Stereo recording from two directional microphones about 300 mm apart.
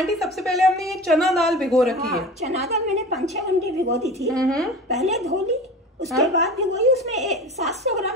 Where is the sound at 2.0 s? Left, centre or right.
Right.